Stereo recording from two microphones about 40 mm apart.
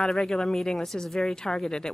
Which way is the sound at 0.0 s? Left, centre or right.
Centre.